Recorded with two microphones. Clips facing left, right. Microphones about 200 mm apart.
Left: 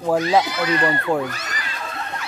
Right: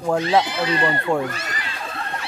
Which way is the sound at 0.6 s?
30° right (ahead or behind).